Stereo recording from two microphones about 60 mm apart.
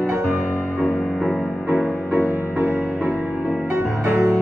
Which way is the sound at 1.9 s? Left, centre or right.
Left.